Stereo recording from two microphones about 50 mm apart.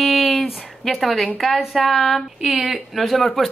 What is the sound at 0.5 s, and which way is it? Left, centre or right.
A woman's voice, centre.